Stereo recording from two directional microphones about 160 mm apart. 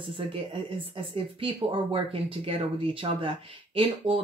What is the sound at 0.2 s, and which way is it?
Speech, 35° right (ahead or behind).